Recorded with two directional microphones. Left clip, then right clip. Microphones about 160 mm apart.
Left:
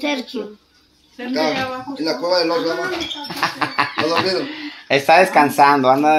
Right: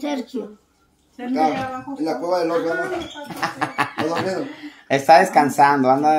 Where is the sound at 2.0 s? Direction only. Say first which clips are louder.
Left 3 dB; 20° right (ahead or behind).